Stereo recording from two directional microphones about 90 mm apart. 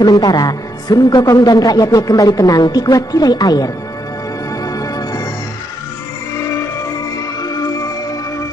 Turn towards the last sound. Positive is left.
turn(degrees=45)  # may be behind; listen again after turning